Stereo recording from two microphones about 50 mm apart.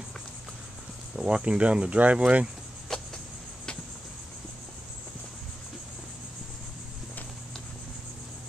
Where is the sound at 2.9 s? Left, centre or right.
Centre.